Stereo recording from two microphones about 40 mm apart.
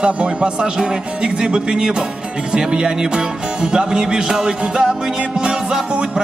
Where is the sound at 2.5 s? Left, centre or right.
Right.